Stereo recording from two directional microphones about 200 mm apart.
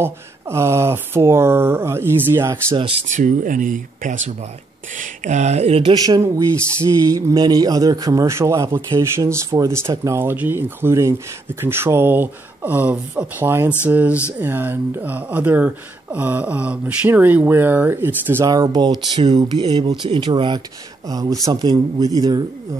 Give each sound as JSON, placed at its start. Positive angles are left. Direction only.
{"t": 0.0, "sound": "a man's voice", "side_deg": -15}
{"t": 3.1, "sound": "speech", "side_deg": -40}
{"t": 6.0, "sound": "a man's voice", "side_deg": -15}